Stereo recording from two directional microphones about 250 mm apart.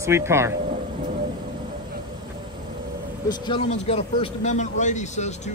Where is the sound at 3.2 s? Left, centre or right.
Centre.